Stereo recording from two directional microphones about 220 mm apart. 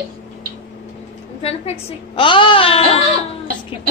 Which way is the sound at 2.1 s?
25° left (ahead or behind).